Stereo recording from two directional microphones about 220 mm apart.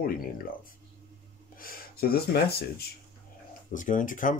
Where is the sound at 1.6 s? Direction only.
40° left (ahead or behind).